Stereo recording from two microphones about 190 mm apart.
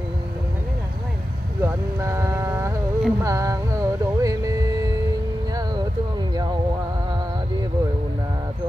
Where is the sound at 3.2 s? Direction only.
15° right (ahead or behind).